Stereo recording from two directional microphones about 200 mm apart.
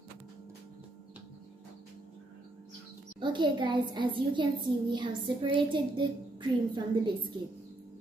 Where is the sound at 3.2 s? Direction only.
25° right (ahead or behind).